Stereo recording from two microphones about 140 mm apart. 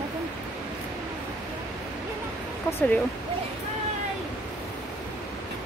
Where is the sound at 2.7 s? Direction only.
15° left (ahead or behind).